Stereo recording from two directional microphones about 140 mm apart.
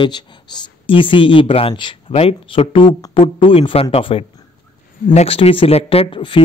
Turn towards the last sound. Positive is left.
turn(degrees=35)  # may be behind; listen again after turning